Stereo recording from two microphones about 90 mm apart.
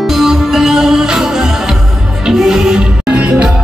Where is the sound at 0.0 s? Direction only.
5° right (ahead or behind).